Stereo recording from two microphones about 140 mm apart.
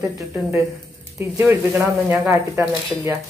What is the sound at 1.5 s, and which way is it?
Speech, 15° right (ahead or behind).